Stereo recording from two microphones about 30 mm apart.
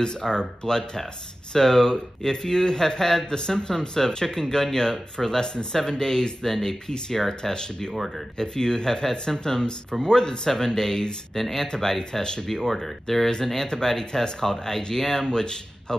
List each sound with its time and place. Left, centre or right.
0.3 s speech: left
6.5 s speech: centre
7.5 s speech: left
11.3 s speech: centre
11.6 s speech: left
12.5 s speech: centre
13.7 s speech: left